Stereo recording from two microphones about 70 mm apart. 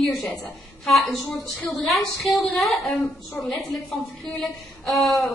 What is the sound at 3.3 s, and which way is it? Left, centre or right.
Speech, centre.